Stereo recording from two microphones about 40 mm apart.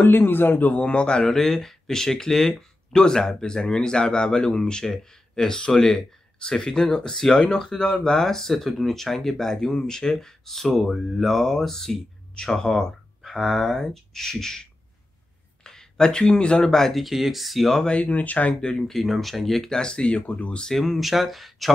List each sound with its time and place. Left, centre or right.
0.0 s a man's voice: left
0.8 s speech: left
1.2 s speech: centre
13.2 s speech: centre; by 16.7 s left
16.7 s speech: centre
17.0 s speech: centre
17.8 s speech: left
18.1 s speech: left
18.6 s speech: centre
18.9 s speech: centre
19.7 s speech: centre
20.7 s speech: centre